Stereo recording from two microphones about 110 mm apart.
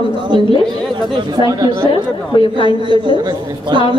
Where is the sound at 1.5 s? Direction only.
35° right (ahead or behind).